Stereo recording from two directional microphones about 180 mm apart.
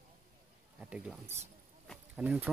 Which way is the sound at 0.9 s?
5° right (ahead or behind).